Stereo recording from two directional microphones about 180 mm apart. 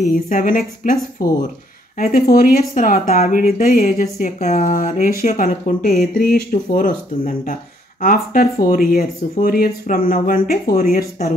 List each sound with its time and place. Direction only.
0.1 s speech: 50° left (ahead or behind)